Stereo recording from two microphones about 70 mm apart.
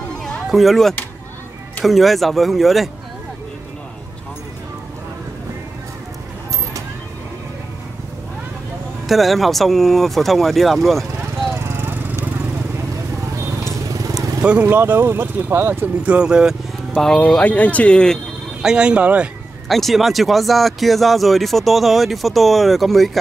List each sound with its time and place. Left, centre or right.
0.2 s music: centre
1.9 s speech: centre
9.0 s speech: centre
11.7 s lawn mower: right
14.1 s vehicle: centre
14.7 s speech: right
16.0 s speech: centre
16.9 s speech: centre
17.4 s speech: centre
18.6 s speech: centre
19.7 s speech: centre